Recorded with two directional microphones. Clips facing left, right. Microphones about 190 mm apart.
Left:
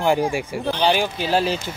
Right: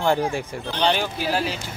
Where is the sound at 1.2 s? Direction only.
25° left (ahead or behind).